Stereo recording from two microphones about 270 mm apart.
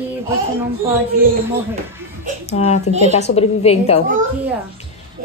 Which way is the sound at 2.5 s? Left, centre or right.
Left.